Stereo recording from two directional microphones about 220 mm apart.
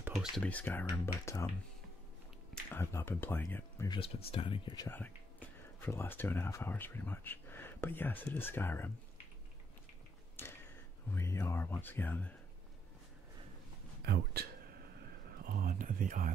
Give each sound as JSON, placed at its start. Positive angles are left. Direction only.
{"t": 0.0, "sound": "speech", "side_deg": -5}
{"t": 2.7, "sound": "speech", "side_deg": 10}
{"t": 4.0, "sound": "speech", "side_deg": 25}
{"t": 4.8, "sound": "speech", "side_deg": 10}
{"t": 10.4, "sound": "a sound", "side_deg": 10}
{"t": 11.1, "sound": "speech", "side_deg": 10}
{"t": 14.0, "sound": "speech", "side_deg": -45}